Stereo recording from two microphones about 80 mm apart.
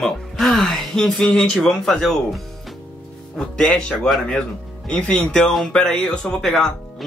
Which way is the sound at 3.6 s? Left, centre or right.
Centre.